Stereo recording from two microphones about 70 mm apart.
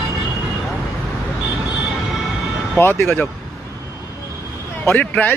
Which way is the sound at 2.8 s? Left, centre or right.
Left.